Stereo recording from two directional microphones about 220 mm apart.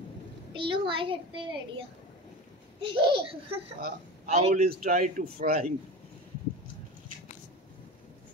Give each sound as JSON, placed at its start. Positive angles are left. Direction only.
{"t": 0.6, "sound": "a child's voice", "side_deg": -25}